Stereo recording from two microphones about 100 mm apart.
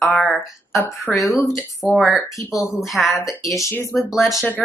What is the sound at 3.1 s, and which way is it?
Speech, 30° left (ahead or behind).